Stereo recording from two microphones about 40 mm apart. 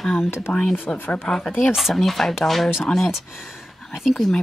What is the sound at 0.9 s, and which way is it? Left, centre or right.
Speech, left.